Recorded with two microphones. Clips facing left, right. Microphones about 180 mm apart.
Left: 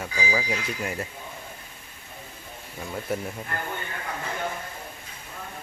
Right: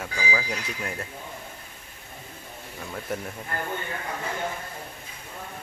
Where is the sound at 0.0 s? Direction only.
5° left (ahead or behind).